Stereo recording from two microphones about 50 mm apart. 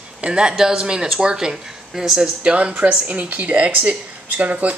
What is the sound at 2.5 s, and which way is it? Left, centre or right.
Speech, right.